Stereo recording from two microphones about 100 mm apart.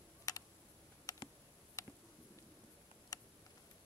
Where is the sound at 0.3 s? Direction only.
40° left (ahead or behind).